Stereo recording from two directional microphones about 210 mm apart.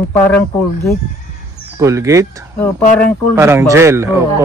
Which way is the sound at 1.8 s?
15° right (ahead or behind).